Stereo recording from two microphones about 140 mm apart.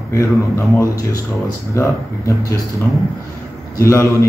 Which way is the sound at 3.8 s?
20° left (ahead or behind).